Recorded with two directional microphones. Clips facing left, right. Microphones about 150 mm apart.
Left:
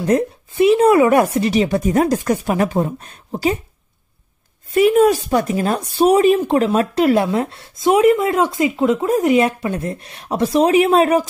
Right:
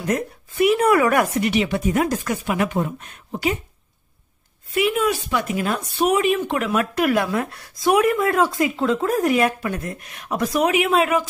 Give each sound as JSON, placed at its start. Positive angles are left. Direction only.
{"t": 0.0, "sound": "a woman's voice", "side_deg": 25}
{"t": 4.7, "sound": "speech", "side_deg": 40}